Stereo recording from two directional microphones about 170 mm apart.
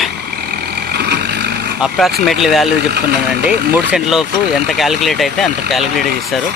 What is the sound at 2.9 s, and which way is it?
Speech, 70° right (ahead or behind).